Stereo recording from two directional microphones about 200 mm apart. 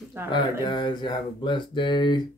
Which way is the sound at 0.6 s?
20° left (ahead or behind).